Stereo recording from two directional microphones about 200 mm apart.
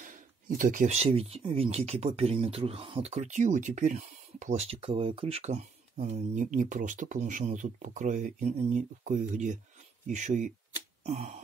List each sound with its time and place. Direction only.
0.0 s speech: 40° right (ahead or behind)